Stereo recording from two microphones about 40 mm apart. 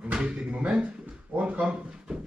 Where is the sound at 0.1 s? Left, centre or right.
Right.